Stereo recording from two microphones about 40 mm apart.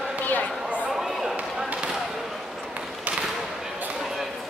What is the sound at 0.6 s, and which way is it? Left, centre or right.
Chatter, right.